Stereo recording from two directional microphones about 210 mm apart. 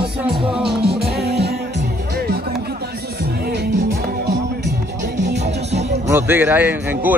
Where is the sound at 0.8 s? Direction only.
50° right (ahead or behind).